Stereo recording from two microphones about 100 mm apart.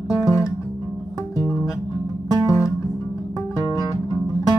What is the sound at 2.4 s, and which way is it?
Guitar, 30° left (ahead or behind).